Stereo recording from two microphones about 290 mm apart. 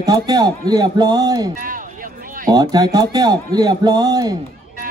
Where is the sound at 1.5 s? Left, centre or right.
Right.